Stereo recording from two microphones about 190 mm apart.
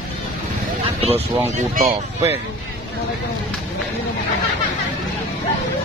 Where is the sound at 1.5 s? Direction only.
50° right (ahead or behind).